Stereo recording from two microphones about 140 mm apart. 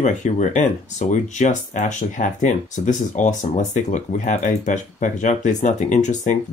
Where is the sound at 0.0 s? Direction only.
60° left (ahead or behind).